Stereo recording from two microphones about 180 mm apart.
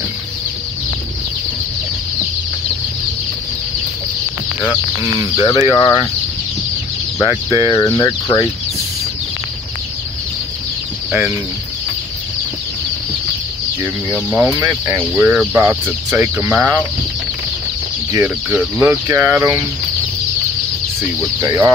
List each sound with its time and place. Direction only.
5.0 s speech: 20° right (ahead or behind)
5.4 s speech: 25° left (ahead or behind)
7.2 s speech: 20° left (ahead or behind)
11.1 s speech: 5° right (ahead or behind)
14.1 s speech: 10° right (ahead or behind)
18.1 s speech: 15° right (ahead or behind)
21.4 s speech: 15° right (ahead or behind)